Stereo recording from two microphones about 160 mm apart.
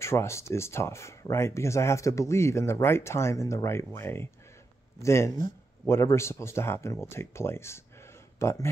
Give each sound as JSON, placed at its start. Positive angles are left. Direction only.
{"t": 0.0, "sound": "speech", "side_deg": 15}